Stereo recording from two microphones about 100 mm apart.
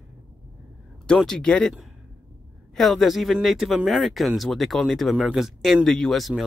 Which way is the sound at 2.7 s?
Centre (ahead or behind).